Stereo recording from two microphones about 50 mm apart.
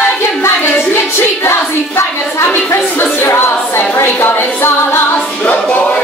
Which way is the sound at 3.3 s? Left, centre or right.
Left.